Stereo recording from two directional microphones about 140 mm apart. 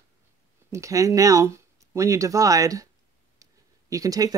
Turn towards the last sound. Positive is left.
turn(degrees=-25)  # may be behind; listen again after turning